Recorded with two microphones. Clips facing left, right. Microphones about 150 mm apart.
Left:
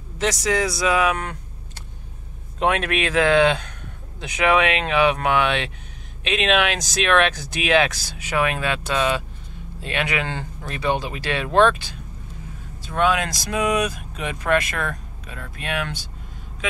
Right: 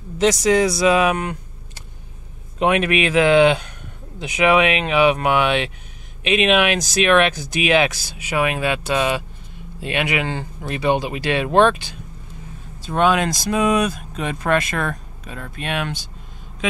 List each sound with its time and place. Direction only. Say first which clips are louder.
0.2 s speech: right 6 dB; 20° right (ahead or behind)
2.6 s speech: right 4 dB; 10° right (ahead or behind)